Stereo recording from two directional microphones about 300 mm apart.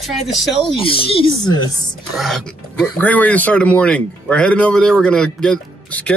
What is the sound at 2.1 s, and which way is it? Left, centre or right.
Speech, centre.